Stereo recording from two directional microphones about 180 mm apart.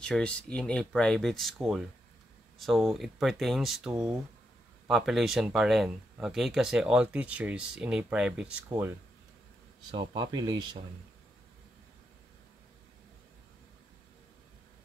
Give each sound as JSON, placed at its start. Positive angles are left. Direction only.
{"t": 0.0, "sound": "speech", "side_deg": 5}
{"t": 9.8, "sound": "speech", "side_deg": -25}